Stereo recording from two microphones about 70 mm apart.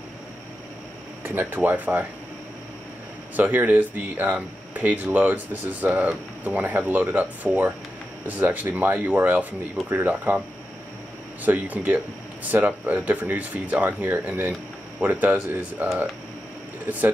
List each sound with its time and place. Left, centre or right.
1.2 s speech: right
3.3 s speech: right
11.4 s speech: right